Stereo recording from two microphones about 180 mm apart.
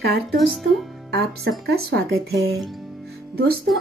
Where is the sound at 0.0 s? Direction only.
65° right (ahead or behind).